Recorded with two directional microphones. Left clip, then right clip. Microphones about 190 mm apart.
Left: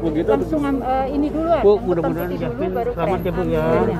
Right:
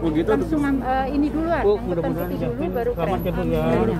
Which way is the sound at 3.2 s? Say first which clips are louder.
Left 3 dB; 20° left (ahead or behind).